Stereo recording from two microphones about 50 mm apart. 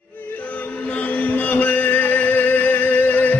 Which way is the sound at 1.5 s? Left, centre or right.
Left.